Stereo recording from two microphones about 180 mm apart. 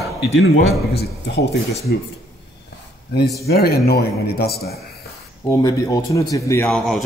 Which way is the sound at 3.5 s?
60° left (ahead or behind).